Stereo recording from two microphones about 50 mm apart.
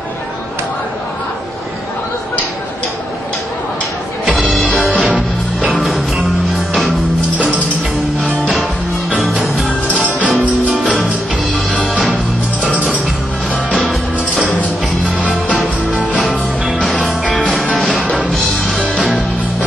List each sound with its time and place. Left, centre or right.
4.3 s music: centre
9.1 s music: centre
9.7 s music: left
11.5 s music: left
13.7 s music: left
14.3 s music: centre
16.3 s music: right
16.8 s music: centre
17.3 s music: centre
18.0 s music: left